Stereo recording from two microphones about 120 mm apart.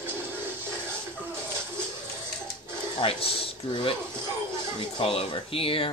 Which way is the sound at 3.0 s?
50° left (ahead or behind).